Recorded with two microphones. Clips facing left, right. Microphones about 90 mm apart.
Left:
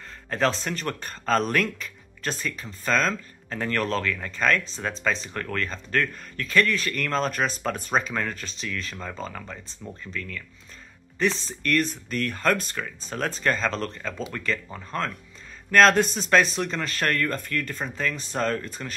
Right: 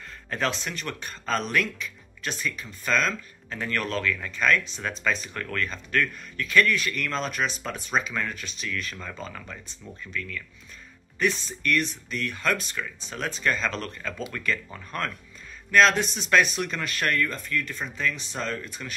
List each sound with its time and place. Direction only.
0.3 s speech: 35° left (ahead or behind)
15.7 s speech: 45° left (ahead or behind)